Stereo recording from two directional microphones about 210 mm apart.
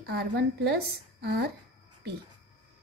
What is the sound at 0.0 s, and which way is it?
A woman's voice, 50° right (ahead or behind).